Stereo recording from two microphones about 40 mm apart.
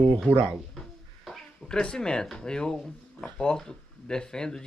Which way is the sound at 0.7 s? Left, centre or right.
Centre.